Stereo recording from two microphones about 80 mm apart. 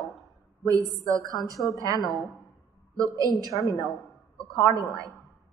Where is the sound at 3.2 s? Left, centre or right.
Right.